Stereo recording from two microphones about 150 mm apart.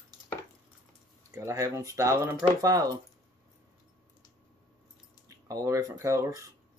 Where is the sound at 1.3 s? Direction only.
20° right (ahead or behind).